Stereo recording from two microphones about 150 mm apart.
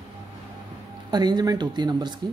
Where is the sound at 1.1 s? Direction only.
30° right (ahead or behind).